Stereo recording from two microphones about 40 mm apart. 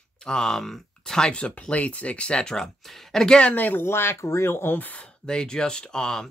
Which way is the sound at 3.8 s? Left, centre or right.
Left.